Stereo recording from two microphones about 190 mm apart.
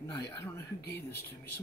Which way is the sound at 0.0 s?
15° left (ahead or behind).